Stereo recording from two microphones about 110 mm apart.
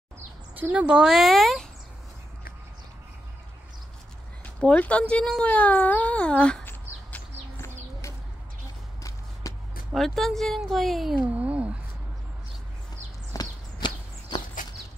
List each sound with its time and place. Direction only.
0.6 s a woman's voice: 15° right (ahead or behind); by 1.7 s centre (ahead or behind)
4.6 s speech: 10° left (ahead or behind)
9.5 s a sound: 30° left (ahead or behind)
9.9 s a woman's voice: centre (ahead or behind)
11.2 s speech: 10° right (ahead or behind)
13.3 s walk: 40° left (ahead or behind)